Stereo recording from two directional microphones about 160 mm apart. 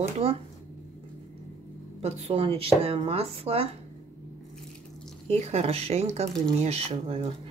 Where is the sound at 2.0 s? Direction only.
40° right (ahead or behind).